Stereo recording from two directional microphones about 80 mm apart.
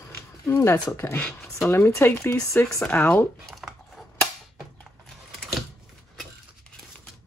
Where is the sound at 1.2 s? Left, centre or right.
Centre.